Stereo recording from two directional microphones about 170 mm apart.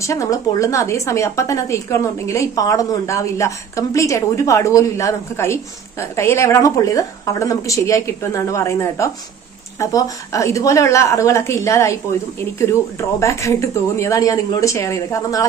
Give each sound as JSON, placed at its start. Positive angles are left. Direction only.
{"t": 0.0, "sound": "a woman's voice", "side_deg": 20}
{"t": 13.2, "sound": "a woman's voice", "side_deg": 15}